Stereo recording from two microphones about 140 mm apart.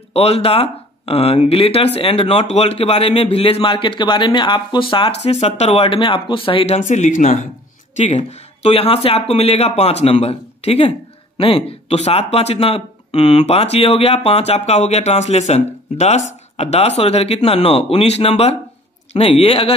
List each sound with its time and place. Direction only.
0.1 s a man's voice: 45° left (ahead or behind)
6.8 s speech: 65° left (ahead or behind); by 19.7 s 45° left (ahead or behind)